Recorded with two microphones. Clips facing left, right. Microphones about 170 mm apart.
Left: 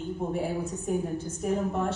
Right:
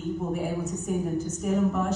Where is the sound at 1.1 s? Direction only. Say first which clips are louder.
Right 2 dB; 30° left (ahead or behind).